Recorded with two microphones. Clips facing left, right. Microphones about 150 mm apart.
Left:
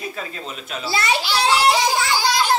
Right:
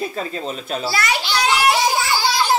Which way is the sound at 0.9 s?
25° left (ahead or behind).